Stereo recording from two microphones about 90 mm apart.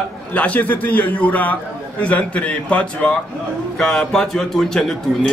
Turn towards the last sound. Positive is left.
turn(degrees=5)  # may be behind; listen again after turning